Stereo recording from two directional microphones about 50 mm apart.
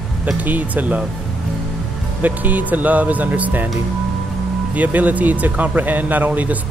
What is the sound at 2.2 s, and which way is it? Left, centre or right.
Speech, right.